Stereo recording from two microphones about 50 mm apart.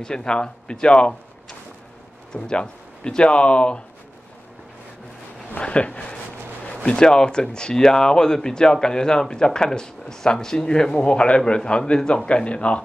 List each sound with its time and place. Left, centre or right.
0.0 s speech: centre
2.3 s speech: centre
5.6 s speech: left